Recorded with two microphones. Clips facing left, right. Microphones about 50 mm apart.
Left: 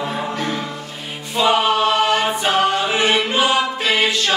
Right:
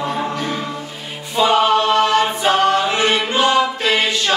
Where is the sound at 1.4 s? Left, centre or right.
Centre.